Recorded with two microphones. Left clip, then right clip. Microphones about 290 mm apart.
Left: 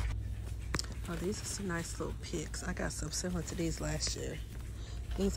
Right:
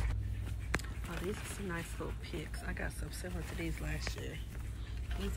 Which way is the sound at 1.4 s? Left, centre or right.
Centre.